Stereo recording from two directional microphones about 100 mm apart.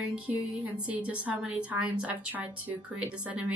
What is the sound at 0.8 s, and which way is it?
A woman's voice, 15° right (ahead or behind).